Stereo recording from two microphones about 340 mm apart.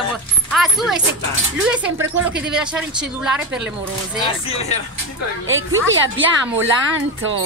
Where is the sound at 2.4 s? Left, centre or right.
Centre.